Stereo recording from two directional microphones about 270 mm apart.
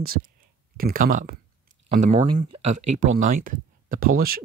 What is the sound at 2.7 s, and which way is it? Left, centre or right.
Speech, right.